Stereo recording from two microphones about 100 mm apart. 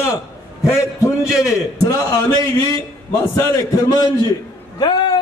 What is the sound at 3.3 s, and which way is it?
Speech, 30° left (ahead or behind).